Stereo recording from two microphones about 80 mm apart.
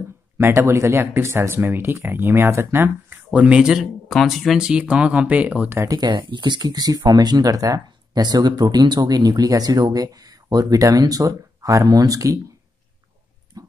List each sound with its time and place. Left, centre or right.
0.4 s speech: right
3.3 s speech: centre
4.6 s speech: centre
5.9 s speech: right
13.5 s dog: right